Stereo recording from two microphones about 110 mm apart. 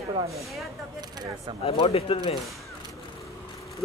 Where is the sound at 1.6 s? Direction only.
65° left (ahead or behind).